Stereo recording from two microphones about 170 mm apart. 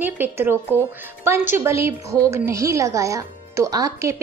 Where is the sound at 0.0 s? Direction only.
10° right (ahead or behind).